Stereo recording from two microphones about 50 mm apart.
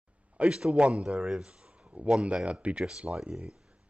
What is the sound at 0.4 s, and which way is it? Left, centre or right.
Speech, centre.